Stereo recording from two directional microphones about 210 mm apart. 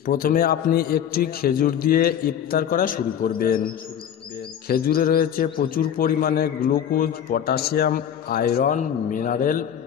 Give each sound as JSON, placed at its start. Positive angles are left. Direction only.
{"t": 0.0, "sound": "a man's voice", "side_deg": 45}